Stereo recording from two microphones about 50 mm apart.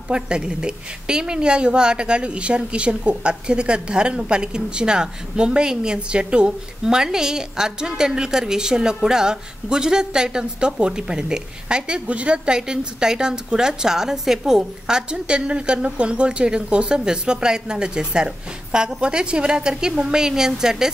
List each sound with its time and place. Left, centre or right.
0.1 s a woman's voice: centre